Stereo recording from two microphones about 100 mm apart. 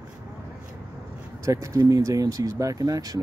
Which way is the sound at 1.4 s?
30° right (ahead or behind).